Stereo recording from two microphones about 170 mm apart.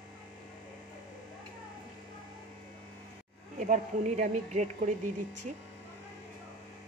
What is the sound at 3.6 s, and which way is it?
Speech, 45° right (ahead or behind).